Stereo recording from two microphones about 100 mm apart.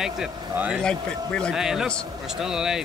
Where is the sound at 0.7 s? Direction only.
10° left (ahead or behind).